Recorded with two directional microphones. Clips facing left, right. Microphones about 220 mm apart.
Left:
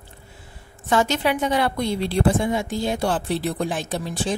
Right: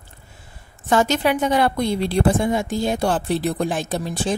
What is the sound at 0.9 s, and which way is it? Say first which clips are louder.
A woman's voice: right 2 dB; 45° right (ahead or behind).